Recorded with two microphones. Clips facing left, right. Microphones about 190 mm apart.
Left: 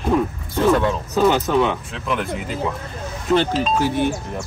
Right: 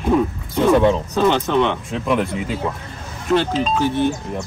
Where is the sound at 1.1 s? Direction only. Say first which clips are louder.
Even; 5° left (ahead or behind).